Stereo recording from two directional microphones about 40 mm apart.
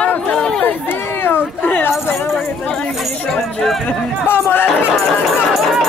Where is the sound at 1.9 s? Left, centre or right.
Centre.